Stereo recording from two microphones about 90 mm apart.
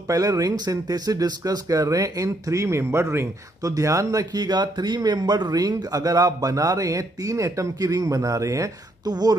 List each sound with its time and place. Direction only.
0.1 s speech: 40° right (ahead or behind)